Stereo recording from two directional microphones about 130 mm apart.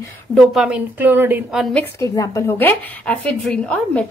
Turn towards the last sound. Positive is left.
turn(degrees=10)  # may be behind; listen again after turning